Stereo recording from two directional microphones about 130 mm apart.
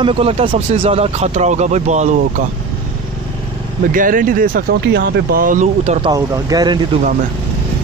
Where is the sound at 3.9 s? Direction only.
90° right.